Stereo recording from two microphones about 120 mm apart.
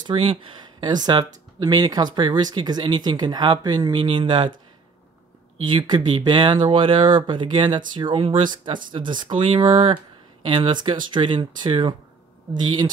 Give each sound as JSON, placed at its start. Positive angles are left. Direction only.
{"t": 0.0, "sound": "speech", "side_deg": -45}
{"t": 5.6, "sound": "speech", "side_deg": -45}